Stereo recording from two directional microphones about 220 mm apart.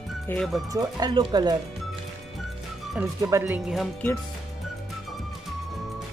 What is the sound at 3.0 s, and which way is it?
Speech, 10° right (ahead or behind).